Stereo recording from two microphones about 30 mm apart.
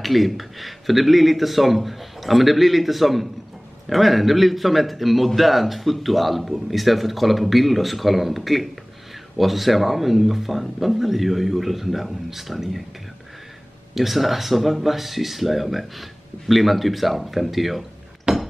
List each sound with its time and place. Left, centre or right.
0.0 s speech: centre
13.9 s speech: centre
18.3 s a sound: right